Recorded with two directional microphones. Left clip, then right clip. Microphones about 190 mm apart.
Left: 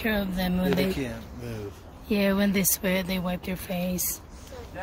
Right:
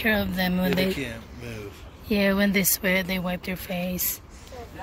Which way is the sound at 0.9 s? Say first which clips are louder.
Right 1 dB; 25° left (ahead or behind).